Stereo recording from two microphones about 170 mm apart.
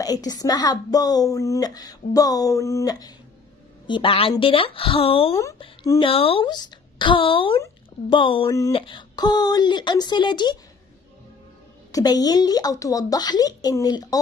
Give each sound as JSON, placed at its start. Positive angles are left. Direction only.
{"t": 0.0, "sound": "a woman's voice", "side_deg": 20}
{"t": 5.3, "sound": "speech", "side_deg": 20}
{"t": 5.9, "sound": "a woman's voice", "side_deg": 30}
{"t": 8.5, "sound": "speech", "side_deg": 20}
{"t": 11.9, "sound": "speech", "side_deg": 25}